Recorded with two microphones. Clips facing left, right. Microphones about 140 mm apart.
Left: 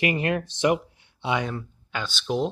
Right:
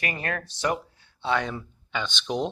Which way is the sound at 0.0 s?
20° left (ahead or behind).